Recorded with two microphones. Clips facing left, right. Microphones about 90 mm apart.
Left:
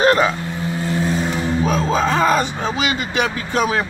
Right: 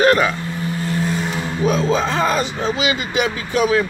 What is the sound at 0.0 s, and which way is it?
Vehicle, 25° left (ahead or behind).